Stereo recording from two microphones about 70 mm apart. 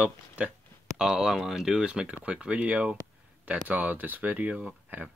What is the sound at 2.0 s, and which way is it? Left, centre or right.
Speech, right.